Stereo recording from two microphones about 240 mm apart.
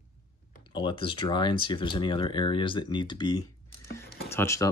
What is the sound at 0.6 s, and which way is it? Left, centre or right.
Speech, centre.